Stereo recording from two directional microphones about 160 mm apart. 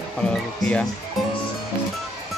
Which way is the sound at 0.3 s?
5° left (ahead or behind).